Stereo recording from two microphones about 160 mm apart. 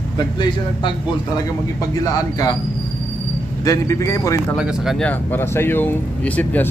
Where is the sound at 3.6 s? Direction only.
20° left (ahead or behind).